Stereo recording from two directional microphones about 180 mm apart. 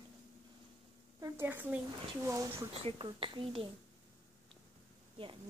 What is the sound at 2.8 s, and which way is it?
Speech, 30° right (ahead or behind).